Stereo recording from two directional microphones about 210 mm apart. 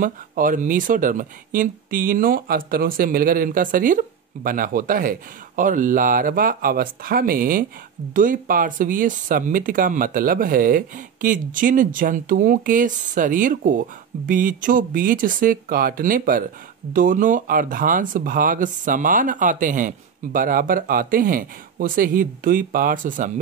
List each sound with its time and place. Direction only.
0.0 s speech: 40° right (ahead or behind)